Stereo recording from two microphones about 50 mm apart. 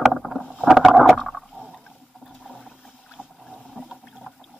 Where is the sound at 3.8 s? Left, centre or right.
Centre.